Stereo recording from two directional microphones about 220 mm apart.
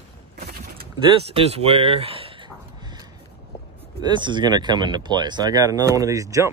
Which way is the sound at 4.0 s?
20° right (ahead or behind).